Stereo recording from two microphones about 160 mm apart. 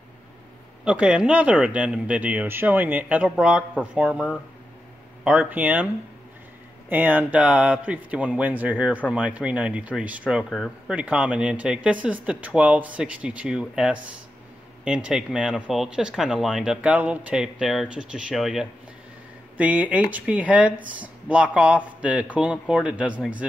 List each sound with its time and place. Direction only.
0.8 s speech: 5° right (ahead or behind)
6.9 s speech: 10° right (ahead or behind)